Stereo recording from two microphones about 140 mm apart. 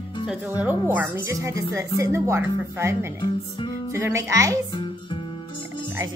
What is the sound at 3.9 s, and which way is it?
Speech, 15° right (ahead or behind).